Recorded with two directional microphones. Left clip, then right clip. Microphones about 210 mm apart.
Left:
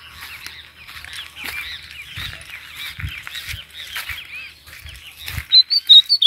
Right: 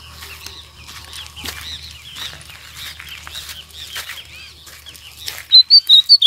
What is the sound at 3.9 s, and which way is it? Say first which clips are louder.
Goose: left 1 dB; centre (ahead or behind).